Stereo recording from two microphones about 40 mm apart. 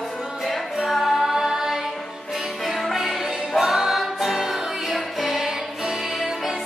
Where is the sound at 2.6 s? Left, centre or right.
Centre.